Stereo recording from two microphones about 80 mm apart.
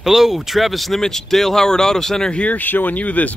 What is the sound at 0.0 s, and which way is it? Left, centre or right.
Speech, centre.